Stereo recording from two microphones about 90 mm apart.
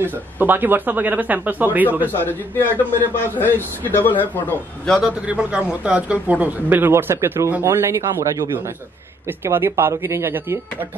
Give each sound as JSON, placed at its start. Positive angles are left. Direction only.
{"t": 0.0, "sound": "speech", "side_deg": -20}
{"t": 2.0, "sound": "a man's voice", "side_deg": 20}
{"t": 4.8, "sound": "a man's voice", "side_deg": 5}
{"t": 5.2, "sound": "speech", "side_deg": -15}